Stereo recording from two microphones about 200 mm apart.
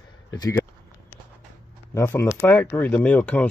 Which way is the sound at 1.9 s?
10° left (ahead or behind).